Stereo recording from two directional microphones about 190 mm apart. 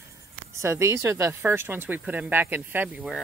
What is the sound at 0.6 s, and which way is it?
Speech, 15° right (ahead or behind).